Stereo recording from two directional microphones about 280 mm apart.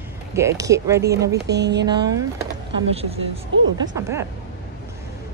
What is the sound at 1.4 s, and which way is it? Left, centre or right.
Speech, right.